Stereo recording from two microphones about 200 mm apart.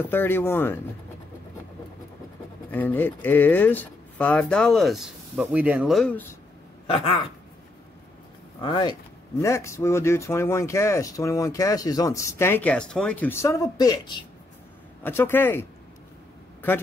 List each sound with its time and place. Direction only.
0.1 s speech: 10° left (ahead or behind)
2.7 s speech: 10° left (ahead or behind)
6.9 s speech: 25° left (ahead or behind)
8.6 s speech: 25° left (ahead or behind)
15.0 s speech: 10° left (ahead or behind)